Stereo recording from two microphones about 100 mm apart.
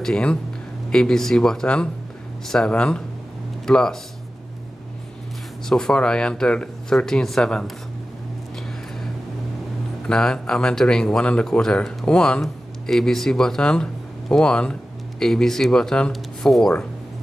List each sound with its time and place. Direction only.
0.0 s speech: 10° left (ahead or behind)
5.7 s speech: 5° left (ahead or behind)
10.0 s speech: 5° left (ahead or behind)